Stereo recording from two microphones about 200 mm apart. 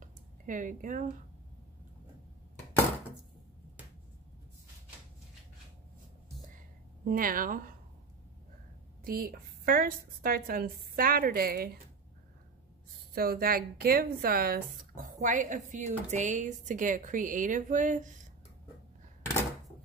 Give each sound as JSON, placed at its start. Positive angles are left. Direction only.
{"t": 0.0, "sound": "a sound", "side_deg": -40}
{"t": 7.1, "sound": "a woman's voice", "side_deg": -45}
{"t": 9.0, "sound": "a woman's voice", "side_deg": -45}
{"t": 13.1, "sound": "speech", "side_deg": -50}